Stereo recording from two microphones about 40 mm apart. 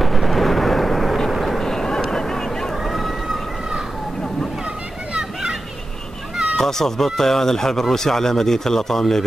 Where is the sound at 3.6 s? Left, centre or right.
Centre.